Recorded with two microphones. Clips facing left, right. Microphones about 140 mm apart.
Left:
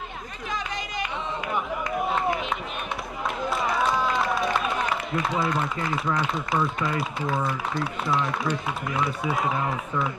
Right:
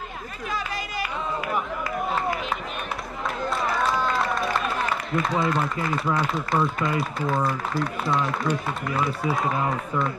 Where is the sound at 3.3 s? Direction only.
Centre (ahead or behind).